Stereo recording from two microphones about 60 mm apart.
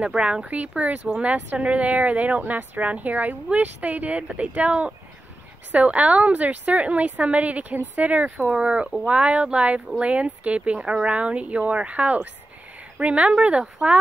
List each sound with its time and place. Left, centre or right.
0.0 s speech: centre